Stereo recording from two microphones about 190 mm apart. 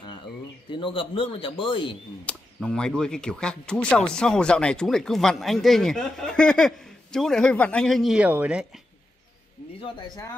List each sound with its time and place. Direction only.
0.7 s speech: 25° left (ahead or behind)
2.2 s speech: 5° left (ahead or behind)